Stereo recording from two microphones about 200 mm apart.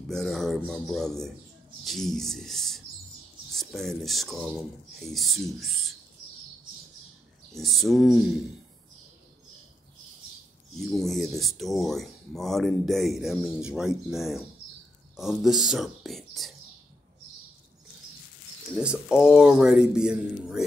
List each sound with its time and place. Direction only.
0.1 s speech: centre (ahead or behind)
7.5 s speech: centre (ahead or behind)
10.7 s speech: centre (ahead or behind)
15.1 s whispering: centre (ahead or behind)
18.8 s speech: 5° right (ahead or behind)